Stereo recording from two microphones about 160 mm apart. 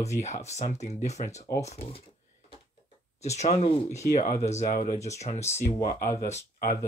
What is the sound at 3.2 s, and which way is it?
Speech, 45° left (ahead or behind).